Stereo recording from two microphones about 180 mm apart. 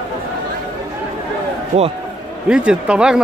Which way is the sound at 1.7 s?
40° right (ahead or behind).